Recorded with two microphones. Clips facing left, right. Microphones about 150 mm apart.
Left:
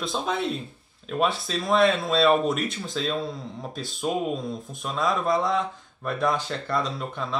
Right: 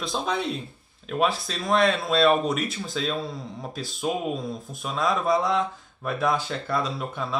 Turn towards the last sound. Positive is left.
turn(degrees=-5)  # may be behind; listen again after turning